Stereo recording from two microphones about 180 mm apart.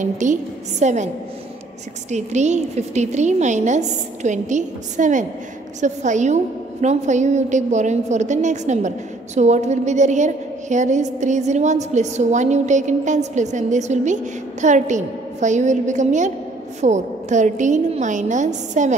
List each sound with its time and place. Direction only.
0.0 s a woman's voice: 45° right (ahead or behind)
2.0 s a woman's voice: 40° right (ahead or behind)